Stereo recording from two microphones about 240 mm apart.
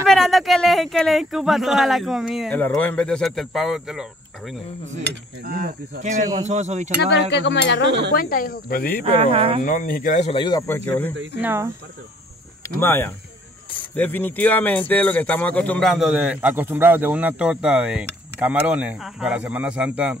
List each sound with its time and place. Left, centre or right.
0.0 s speech: centre
4.8 s cutlery: right
6.3 s speech: right
7.0 s speech: left
8.1 s speech: left
9.0 s speech: right
9.6 s speech: left; by 10.8 s centre
10.9 s speech: centre
11.4 s speech: centre
12.6 s speech: centre